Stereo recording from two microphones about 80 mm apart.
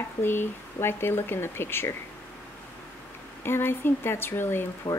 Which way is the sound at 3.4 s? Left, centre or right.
Left.